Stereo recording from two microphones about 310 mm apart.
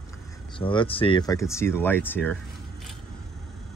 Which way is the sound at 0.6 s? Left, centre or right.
Centre.